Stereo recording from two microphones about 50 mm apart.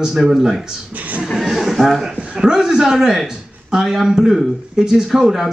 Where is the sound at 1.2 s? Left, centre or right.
Centre.